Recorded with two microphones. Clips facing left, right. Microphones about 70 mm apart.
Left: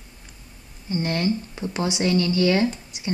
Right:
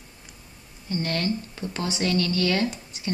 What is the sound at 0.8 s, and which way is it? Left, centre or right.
Speech, centre.